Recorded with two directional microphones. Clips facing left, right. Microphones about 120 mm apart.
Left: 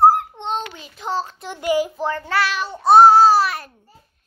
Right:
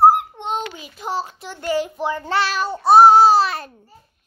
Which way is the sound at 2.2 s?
30° right (ahead or behind).